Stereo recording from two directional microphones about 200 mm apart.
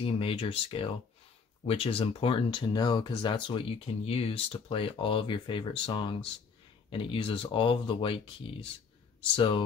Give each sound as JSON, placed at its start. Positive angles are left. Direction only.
{"t": 0.0, "sound": "speech", "side_deg": 25}